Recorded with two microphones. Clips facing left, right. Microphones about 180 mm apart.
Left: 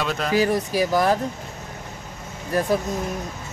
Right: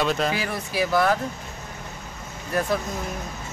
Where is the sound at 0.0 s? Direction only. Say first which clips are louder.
Right 2 dB; centre (ahead or behind).